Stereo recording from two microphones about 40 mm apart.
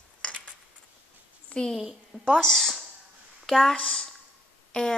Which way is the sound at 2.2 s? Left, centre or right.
Centre.